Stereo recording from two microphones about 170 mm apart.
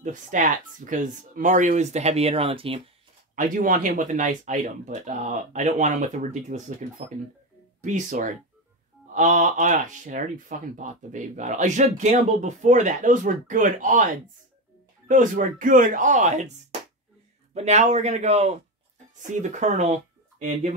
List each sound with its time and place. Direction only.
0.0 s speech: 50° right (ahead or behind)
3.3 s speech: 50° right (ahead or behind)
17.6 s a man's voice: 40° right (ahead or behind)